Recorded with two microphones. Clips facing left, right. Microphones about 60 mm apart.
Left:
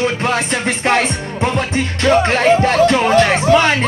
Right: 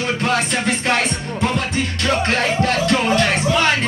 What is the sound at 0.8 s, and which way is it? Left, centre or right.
Music, left.